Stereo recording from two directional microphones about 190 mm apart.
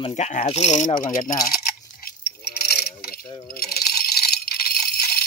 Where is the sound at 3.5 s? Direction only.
55° left (ahead or behind).